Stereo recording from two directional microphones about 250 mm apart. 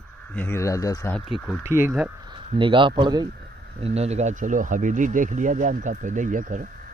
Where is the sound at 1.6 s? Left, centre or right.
Centre.